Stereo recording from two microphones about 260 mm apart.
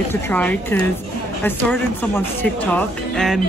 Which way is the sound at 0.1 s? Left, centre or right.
Centre.